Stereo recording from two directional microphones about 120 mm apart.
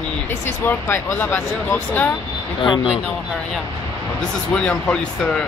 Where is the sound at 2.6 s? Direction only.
45° left (ahead or behind).